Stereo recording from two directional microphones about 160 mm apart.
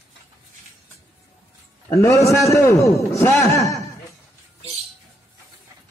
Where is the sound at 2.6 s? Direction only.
15° left (ahead or behind).